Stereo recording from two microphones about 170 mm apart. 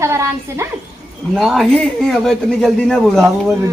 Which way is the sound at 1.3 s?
Centre (ahead or behind).